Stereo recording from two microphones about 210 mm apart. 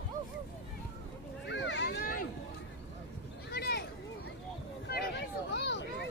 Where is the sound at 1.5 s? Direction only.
60° left (ahead or behind).